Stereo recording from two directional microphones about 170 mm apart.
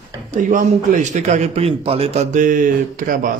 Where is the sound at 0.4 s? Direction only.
50° right (ahead or behind).